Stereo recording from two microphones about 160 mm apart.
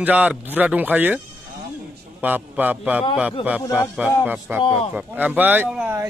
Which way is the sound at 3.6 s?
15° left (ahead or behind).